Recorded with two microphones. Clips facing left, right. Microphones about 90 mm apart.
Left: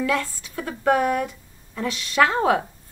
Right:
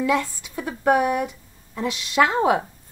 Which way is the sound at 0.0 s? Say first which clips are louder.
Right 2 dB; 20° right (ahead or behind).